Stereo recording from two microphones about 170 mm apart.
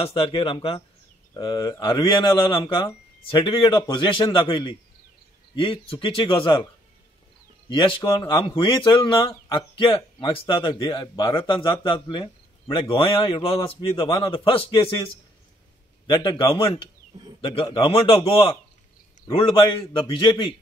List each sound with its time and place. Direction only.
0.0 s speech: 35° left (ahead or behind)
7.7 s speech: 30° left (ahead or behind)
16.1 s speech: 30° left (ahead or behind)